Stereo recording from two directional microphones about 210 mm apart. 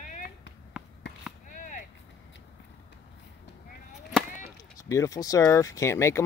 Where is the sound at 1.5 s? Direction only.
40° left (ahead or behind).